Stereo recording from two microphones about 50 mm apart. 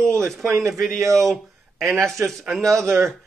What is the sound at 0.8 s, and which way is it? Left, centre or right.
Speech, right.